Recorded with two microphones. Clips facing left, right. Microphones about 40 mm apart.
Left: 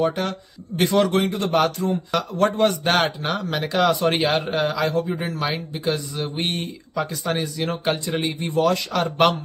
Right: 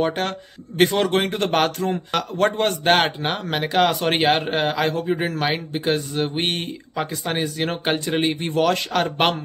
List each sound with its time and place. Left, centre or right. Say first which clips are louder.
0.0 s speech: even; right
1.0 s a man's voice: right 1 dB; right
7.4 s a man's voice: right 1 dB; right